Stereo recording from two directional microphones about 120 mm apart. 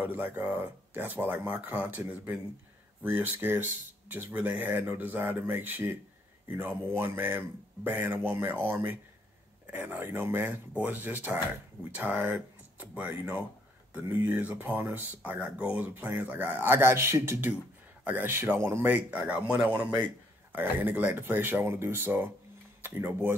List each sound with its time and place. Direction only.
0.0 s speech: 15° right (ahead or behind)